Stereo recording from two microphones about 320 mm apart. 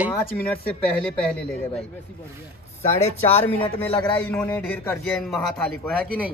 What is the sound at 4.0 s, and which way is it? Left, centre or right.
A man's voice, centre.